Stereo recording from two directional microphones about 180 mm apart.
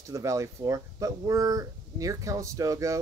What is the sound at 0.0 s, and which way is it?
Speech, 15° right (ahead or behind).